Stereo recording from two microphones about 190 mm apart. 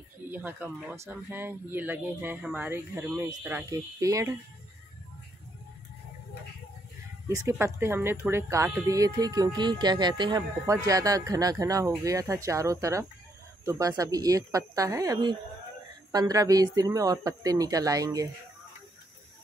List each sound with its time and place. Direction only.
0.3 s speech: 10° right (ahead or behind)
7.2 s speech: 15° right (ahead or behind)